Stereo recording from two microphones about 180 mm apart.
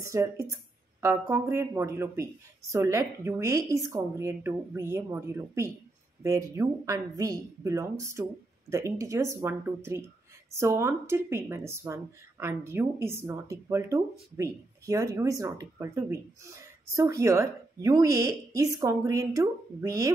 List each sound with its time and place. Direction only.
0.1 s speech: 15° right (ahead or behind)